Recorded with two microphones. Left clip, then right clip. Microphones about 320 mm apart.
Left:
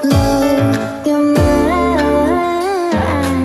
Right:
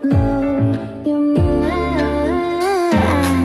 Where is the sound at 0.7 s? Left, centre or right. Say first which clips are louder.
Left 5 dB; left.